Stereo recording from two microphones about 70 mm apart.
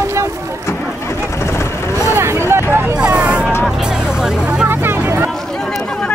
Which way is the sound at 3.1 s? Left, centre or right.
Centre.